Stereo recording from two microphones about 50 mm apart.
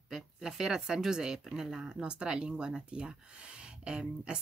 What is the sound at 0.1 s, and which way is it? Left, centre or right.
Speech, centre.